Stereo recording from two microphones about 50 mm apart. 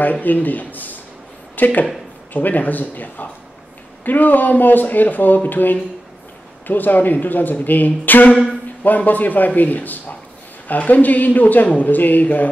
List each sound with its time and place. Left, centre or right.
0.0 s speech: left